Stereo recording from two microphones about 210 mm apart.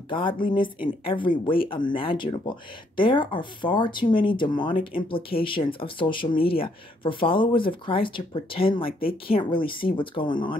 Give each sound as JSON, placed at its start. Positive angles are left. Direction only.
{"t": 0.1, "sound": "speech", "side_deg": 25}